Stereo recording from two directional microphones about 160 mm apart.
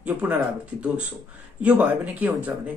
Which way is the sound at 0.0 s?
10° right (ahead or behind).